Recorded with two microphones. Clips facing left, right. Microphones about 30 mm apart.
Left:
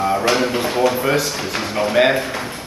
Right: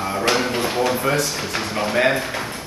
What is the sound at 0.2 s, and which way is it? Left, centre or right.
Speech, centre.